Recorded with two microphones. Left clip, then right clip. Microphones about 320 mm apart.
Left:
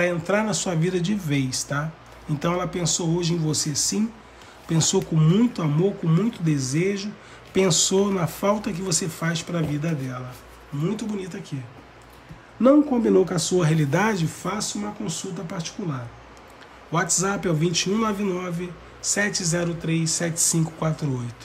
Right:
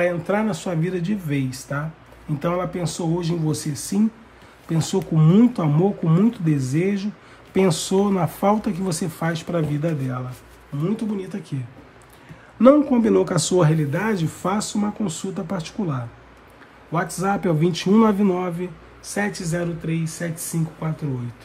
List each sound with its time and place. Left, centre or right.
0.0 s speech: centre
12.6 s speech: centre
13.7 s speech: centre
14.3 s speech: centre